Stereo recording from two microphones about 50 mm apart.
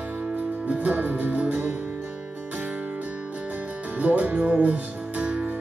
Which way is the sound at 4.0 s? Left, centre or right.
Right.